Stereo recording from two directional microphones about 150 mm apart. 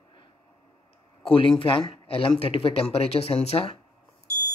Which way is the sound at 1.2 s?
40° left (ahead or behind).